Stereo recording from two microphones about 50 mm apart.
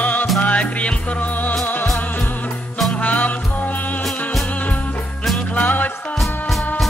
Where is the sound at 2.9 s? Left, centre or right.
Left.